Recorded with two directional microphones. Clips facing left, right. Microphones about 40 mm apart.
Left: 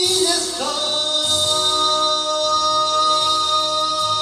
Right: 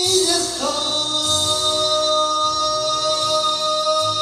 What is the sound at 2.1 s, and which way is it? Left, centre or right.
Singing, left.